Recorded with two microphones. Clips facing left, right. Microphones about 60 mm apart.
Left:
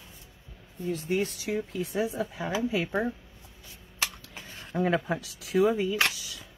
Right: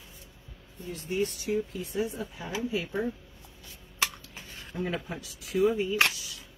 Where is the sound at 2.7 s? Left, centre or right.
Left.